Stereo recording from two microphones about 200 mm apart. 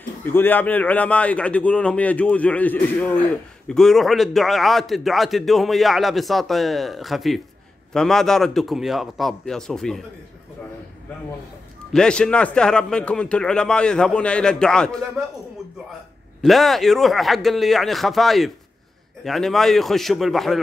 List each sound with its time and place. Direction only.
0.2 s a man's voice: 10° left (ahead or behind)
11.9 s a man's voice: 5° left (ahead or behind)
16.4 s a man's voice: centre (ahead or behind)